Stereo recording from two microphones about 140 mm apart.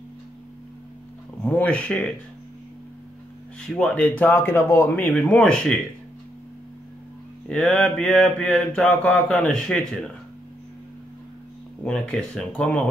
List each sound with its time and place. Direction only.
1.4 s speech: 10° left (ahead or behind)
3.6 s mantra: 5° left (ahead or behind)
7.4 s mantra: 5° left (ahead or behind)
11.8 s mantra: 5° left (ahead or behind)